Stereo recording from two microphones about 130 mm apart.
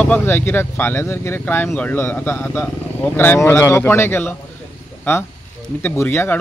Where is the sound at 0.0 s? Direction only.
15° left (ahead or behind).